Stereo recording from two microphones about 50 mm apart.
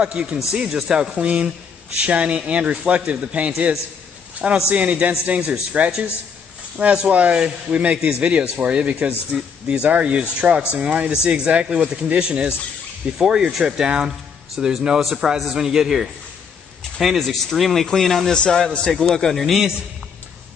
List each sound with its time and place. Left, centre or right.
0.0 s speech: right
7.0 s speech: right; by 18.3 s centre
18.3 s speech: centre
18.9 s speech: centre